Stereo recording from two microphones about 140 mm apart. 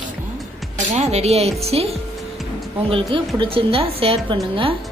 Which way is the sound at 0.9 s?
50° right (ahead or behind).